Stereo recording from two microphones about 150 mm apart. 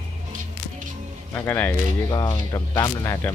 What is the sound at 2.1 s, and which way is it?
Speech, 25° left (ahead or behind).